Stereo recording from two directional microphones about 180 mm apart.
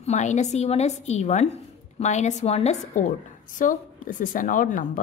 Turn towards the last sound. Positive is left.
turn(degrees=45)  # may be behind; listen again after turning